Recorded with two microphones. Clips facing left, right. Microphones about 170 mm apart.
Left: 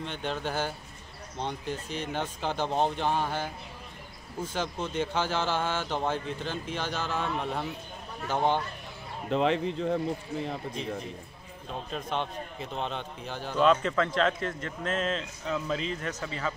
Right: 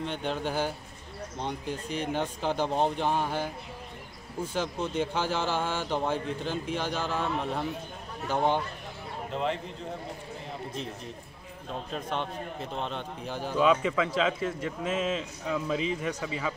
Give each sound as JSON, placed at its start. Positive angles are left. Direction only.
{"t": 0.0, "sound": "a man's voice", "side_deg": -5}
{"t": 9.3, "sound": "speech", "side_deg": 90}
{"t": 11.9, "sound": "a man's voice", "side_deg": 0}